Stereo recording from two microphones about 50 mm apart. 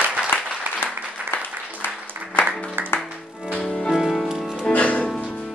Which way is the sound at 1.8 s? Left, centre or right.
Left.